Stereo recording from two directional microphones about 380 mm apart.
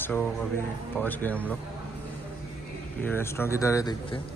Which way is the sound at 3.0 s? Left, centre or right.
Centre.